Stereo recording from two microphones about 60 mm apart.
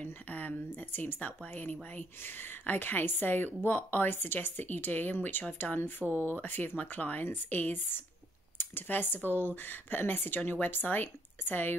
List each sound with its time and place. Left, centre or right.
0.0 s speech: left
6.0 s speech: right
6.4 s speech: left